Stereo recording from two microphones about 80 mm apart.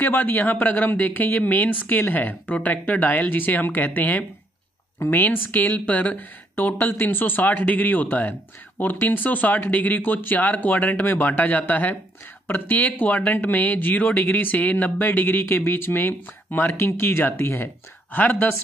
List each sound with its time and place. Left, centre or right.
0.0 s speech: left